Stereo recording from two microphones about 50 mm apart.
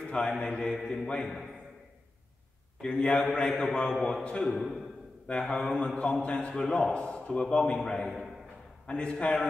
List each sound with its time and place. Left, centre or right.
0.0 s mantra: left
0.4 s a man's voice: centre
2.8 s a man's voice: centre
4.4 s a man's voice: centre
5.8 s a man's voice: left; by 8.3 s centre
8.8 s a man's voice: left